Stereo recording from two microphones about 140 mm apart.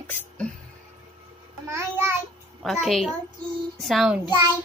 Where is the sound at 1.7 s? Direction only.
15° right (ahead or behind).